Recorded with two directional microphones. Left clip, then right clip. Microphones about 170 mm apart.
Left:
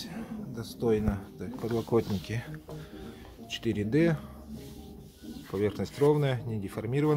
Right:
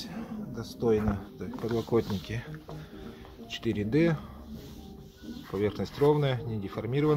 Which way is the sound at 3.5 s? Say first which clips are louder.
Even; 10° left (ahead or behind).